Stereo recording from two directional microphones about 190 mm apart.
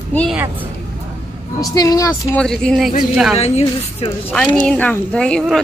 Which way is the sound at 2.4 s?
5° left (ahead or behind).